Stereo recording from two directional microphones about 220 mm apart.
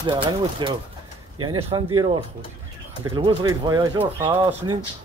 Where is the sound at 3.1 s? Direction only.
20° right (ahead or behind).